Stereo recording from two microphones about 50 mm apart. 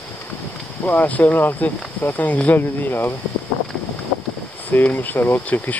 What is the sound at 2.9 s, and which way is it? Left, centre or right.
Speech, left.